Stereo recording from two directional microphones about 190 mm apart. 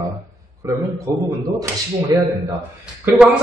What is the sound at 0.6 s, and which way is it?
A man's voice, 15° right (ahead or behind).